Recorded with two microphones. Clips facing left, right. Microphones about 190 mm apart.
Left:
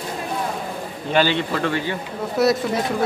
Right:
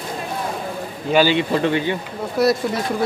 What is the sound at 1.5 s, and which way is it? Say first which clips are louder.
Speech: right 4 dB; 20° right (ahead or behind).